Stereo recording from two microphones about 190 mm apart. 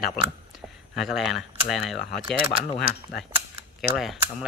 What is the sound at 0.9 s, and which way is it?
A man's voice, centre (ahead or behind).